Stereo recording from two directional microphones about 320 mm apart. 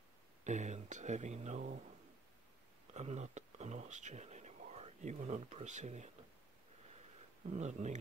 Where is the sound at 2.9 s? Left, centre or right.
Right.